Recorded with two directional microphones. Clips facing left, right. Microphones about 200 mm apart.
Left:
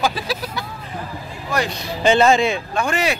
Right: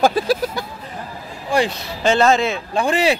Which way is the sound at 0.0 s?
50° right (ahead or behind).